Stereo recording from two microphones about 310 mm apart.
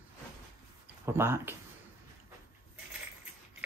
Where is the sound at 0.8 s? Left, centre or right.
Centre.